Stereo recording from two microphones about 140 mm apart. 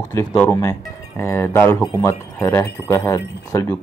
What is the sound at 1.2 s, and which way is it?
Speech, 20° left (ahead or behind).